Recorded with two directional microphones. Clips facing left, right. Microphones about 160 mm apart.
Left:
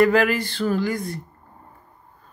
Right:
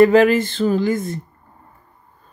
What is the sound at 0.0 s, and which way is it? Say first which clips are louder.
Speech: right 6 dB; 20° right (ahead or behind).